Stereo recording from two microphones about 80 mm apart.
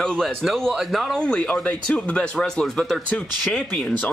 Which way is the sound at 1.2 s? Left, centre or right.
Centre.